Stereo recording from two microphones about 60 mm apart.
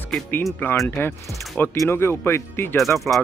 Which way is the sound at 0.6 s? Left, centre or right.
Left.